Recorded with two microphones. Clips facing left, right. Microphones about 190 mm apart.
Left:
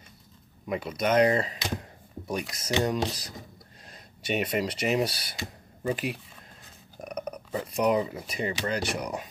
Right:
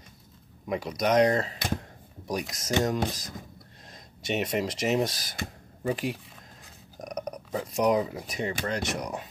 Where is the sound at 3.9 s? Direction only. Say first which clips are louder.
Even; 5° left (ahead or behind).